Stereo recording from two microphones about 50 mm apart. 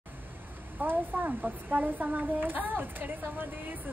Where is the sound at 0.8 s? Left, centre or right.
Right.